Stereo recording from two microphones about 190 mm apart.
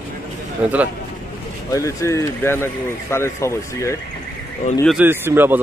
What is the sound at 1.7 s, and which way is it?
Speech, 15° left (ahead or behind).